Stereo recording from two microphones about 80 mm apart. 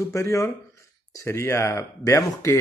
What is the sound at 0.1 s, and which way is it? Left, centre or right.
Speech, left.